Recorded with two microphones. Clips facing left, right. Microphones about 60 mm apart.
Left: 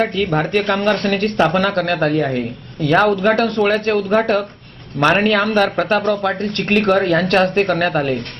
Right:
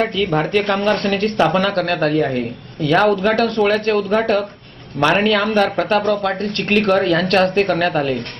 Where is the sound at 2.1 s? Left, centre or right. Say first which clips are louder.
Even; left.